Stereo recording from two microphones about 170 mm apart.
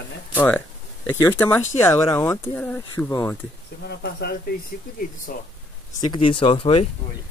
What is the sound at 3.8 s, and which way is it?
Speech, 75° left (ahead or behind).